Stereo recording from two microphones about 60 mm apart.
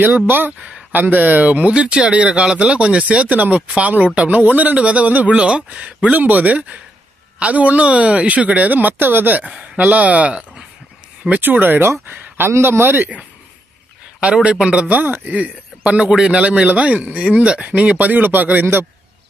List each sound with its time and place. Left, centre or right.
0.0 s speech: right
14.2 s speech: centre; by 18.9 s right